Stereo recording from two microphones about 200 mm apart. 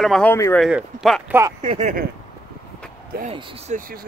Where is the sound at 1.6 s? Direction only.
35° right (ahead or behind).